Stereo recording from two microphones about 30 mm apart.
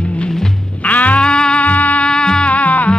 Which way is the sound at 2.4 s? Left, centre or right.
Left.